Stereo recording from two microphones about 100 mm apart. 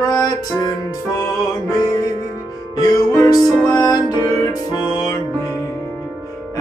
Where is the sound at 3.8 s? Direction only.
45° left (ahead or behind).